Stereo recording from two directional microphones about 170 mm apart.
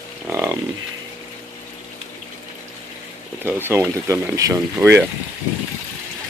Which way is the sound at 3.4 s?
15° right (ahead or behind).